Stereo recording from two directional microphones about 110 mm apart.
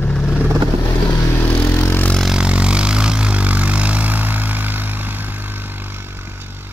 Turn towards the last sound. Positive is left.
turn(degrees=-20)  # may be behind; listen again after turning